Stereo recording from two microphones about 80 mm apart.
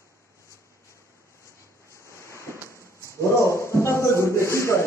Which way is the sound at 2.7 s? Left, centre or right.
Left.